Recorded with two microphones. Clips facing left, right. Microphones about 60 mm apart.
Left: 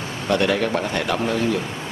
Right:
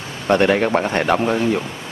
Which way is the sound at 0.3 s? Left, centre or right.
Right.